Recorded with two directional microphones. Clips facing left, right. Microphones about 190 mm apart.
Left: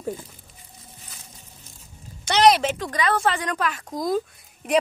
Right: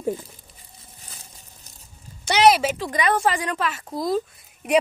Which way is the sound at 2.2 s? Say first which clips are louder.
Even; 5° right (ahead or behind).